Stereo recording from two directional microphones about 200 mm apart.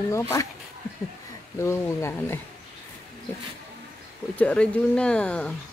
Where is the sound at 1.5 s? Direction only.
15° left (ahead or behind).